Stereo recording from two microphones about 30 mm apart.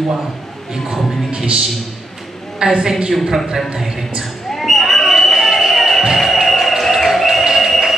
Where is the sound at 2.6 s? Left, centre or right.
Right.